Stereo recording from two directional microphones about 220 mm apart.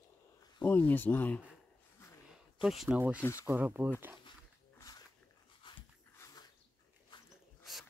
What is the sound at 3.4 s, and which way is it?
Speech, 10° right (ahead or behind).